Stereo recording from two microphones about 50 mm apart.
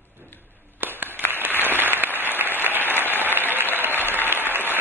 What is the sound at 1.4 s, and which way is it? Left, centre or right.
Applause, right.